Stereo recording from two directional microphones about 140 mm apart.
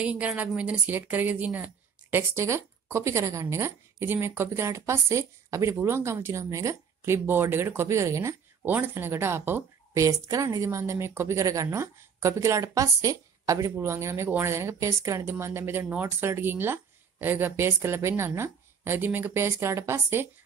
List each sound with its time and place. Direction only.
0.0 s a woman's voice: 10° right (ahead or behind)